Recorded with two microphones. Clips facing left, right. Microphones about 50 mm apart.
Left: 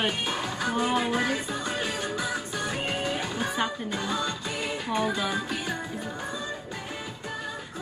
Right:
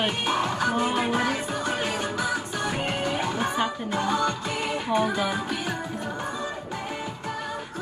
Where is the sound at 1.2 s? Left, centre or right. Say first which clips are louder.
Right 3 dB; right.